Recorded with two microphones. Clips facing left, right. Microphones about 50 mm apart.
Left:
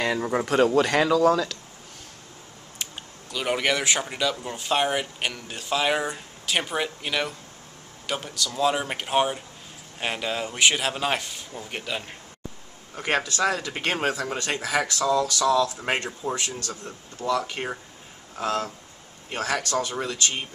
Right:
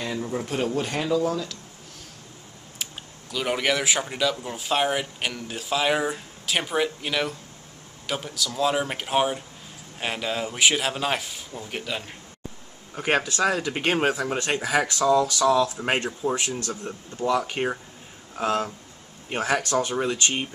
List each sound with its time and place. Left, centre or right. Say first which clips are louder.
0.3 s speech: left 7 dB; left
2.8 s speech: even; centre
12.9 s speech: right 2 dB; centre
16.3 s speech: right 3 dB; right